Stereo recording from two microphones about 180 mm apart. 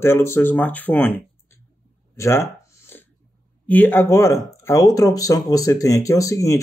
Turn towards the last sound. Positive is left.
turn(degrees=15)  # may be behind; listen again after turning